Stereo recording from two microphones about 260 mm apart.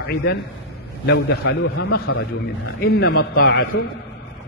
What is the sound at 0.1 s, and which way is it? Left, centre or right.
A man's voice, left.